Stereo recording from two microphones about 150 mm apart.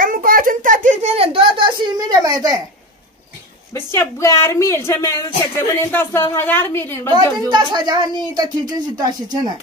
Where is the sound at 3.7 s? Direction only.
15° left (ahead or behind).